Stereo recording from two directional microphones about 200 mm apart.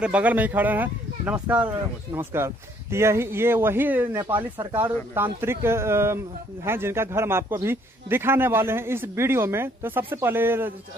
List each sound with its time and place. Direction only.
0.0 s speech: 5° right (ahead or behind)